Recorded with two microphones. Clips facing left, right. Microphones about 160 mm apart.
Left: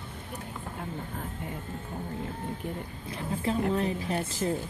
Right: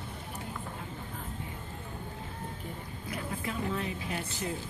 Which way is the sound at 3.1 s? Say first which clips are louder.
Left 6 dB; 30° left (ahead or behind).